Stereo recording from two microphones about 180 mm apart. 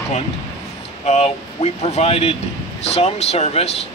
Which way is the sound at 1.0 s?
35° left (ahead or behind).